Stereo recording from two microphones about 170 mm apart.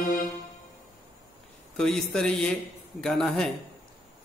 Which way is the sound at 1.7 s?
5° left (ahead or behind).